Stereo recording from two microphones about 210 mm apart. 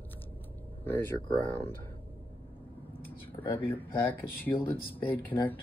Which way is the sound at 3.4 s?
10° left (ahead or behind).